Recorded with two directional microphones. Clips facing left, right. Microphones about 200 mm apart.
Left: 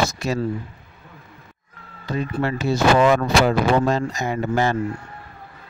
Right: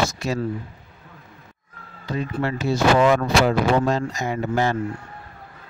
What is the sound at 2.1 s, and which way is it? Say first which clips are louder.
Speech: left 1 dB; 55° left (ahead or behind).